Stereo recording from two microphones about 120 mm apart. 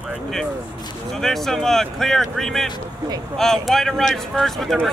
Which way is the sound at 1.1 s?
5° left (ahead or behind).